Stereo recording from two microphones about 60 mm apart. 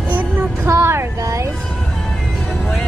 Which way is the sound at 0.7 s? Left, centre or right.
Right.